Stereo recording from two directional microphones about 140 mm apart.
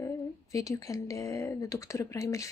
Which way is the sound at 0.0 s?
25° left (ahead or behind).